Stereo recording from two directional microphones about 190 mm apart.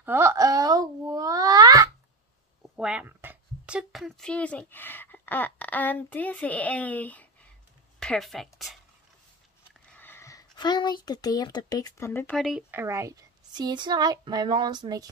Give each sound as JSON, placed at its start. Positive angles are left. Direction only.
{"t": 0.0, "sound": "cat", "side_deg": -10}
{"t": 2.7, "sound": "a woman's voice", "side_deg": -5}
{"t": 9.8, "sound": "speech", "side_deg": 10}
{"t": 12.7, "sound": "a woman's voice", "side_deg": -15}